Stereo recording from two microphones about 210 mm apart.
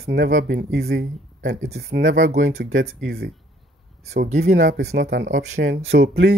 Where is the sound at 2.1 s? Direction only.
40° right (ahead or behind).